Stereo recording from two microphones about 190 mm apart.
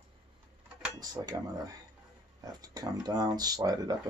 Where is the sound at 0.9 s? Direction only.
20° right (ahead or behind).